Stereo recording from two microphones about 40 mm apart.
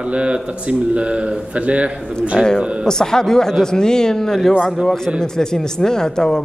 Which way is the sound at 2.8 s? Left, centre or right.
Centre.